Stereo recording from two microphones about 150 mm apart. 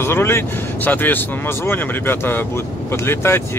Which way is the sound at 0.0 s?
15° left (ahead or behind).